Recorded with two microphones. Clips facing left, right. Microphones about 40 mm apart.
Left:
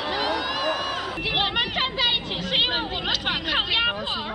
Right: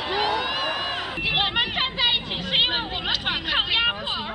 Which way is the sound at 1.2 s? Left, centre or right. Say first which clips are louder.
Right 1 dB; centre.